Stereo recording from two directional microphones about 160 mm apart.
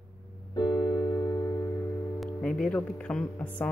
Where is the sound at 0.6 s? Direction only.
25° left (ahead or behind).